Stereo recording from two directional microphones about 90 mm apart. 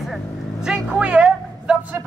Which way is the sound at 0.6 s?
10° right (ahead or behind).